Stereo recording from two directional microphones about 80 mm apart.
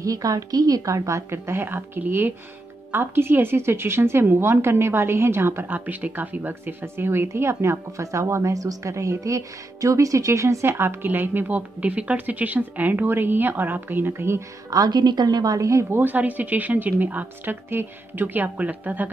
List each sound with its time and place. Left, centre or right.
0.0 s a woman's voice: right
14.7 s a woman's voice: right; by 19.0 s centre